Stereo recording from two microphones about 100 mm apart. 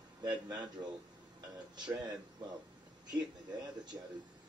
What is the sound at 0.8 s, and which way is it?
Speech, 45° right (ahead or behind).